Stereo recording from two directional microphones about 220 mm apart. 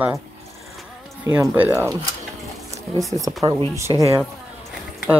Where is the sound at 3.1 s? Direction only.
25° right (ahead or behind).